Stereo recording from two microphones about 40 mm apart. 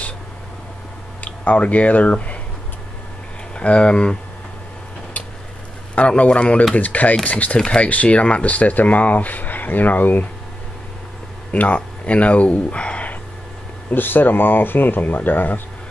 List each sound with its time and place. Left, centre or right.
1.2 s speech: left
3.5 s speech: left
5.9 s a man's voice: left
7.5 s speech: left
7.9 s speech: left
11.5 s speech: left
13.8 s speech: left